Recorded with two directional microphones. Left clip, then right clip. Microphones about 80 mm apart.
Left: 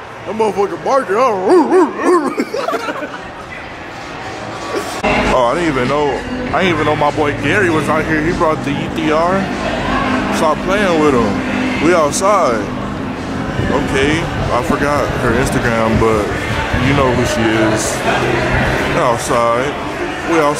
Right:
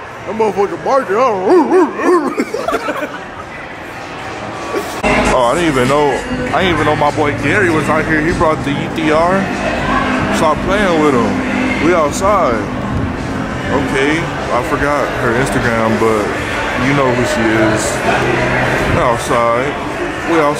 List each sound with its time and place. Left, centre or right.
0.4 s speech: centre
5.3 s speech: centre
5.7 s speech: centre
6.5 s speech: centre
13.7 s speech: centre
18.9 s a man's voice: centre